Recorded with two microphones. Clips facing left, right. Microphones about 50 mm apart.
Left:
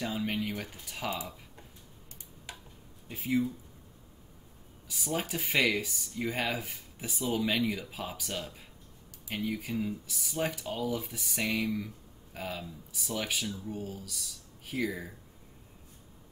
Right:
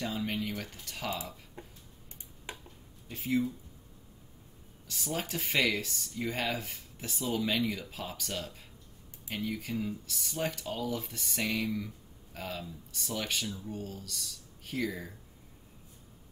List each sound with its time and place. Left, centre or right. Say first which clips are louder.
0.0 s speech: left 1 dB; centre
2.5 s tick-tock: right 3 dB; right
3.1 s speech: left 1 dB; centre
4.8 s speech: left 2 dB; centre